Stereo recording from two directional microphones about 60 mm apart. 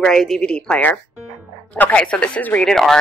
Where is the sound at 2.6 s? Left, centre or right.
Centre.